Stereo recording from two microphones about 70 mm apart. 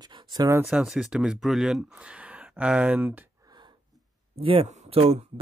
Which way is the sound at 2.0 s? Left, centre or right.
Centre.